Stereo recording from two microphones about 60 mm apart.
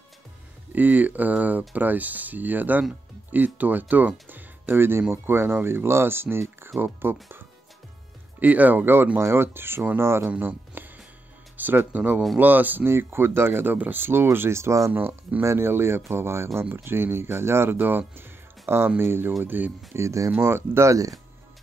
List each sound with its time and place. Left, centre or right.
0.7 s speech: right
10.4 s music: right
11.5 s speech: right
12.8 s speech: right
14.9 s speech: right
15.4 s speech: right
19.9 s speech: right
20.3 s speech: right
20.8 s speech: right